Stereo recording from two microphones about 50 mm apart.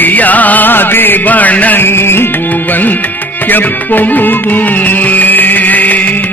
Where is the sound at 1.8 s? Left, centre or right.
Left.